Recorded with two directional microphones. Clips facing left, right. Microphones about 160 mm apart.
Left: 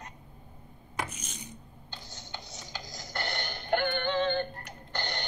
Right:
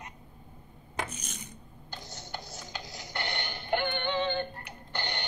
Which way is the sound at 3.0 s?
40° left (ahead or behind).